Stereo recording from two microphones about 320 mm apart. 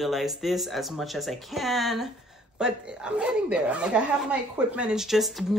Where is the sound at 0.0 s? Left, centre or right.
Centre.